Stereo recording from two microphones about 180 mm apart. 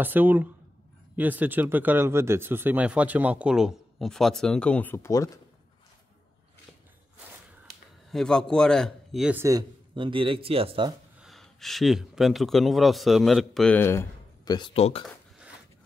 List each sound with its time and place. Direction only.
0.0 s speech: 10° right (ahead or behind); by 5.4 s 20° left (ahead or behind)
8.1 s a man's voice: 5° left (ahead or behind)
9.4 s speech: 20° right (ahead or behind)
11.1 s a man's voice: centre (ahead or behind); by 15.0 s 35° left (ahead or behind)